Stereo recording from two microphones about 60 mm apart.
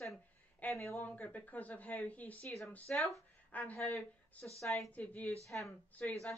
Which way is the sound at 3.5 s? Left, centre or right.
Left.